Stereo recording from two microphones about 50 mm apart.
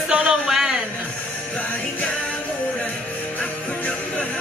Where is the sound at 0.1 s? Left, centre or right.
Centre.